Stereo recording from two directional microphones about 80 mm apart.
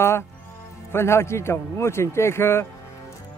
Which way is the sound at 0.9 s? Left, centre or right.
Left.